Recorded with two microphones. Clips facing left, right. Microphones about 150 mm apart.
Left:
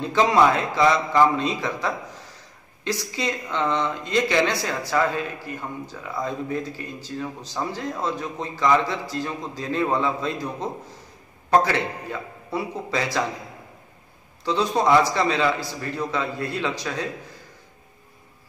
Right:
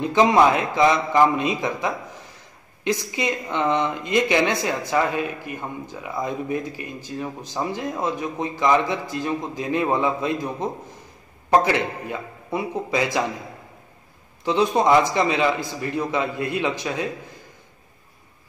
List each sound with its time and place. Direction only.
0.0 s speech: 15° right (ahead or behind)
14.4 s speech: 15° right (ahead or behind)